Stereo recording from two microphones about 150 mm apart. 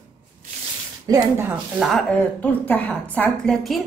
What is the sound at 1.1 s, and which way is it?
Speech, 15° right (ahead or behind).